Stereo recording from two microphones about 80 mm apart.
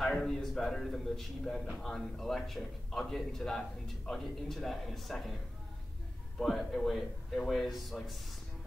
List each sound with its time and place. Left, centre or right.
0.0 s a man's voice: centre
6.3 s a man's voice: centre